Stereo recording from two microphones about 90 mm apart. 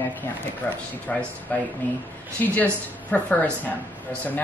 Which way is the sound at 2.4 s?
20° left (ahead or behind).